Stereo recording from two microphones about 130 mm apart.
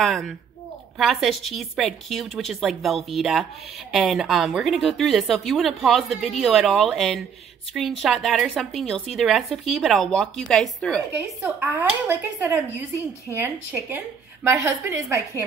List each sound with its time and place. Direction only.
0.0 s a woman's voice: centre (ahead or behind)
11.1 s speech: 15° right (ahead or behind)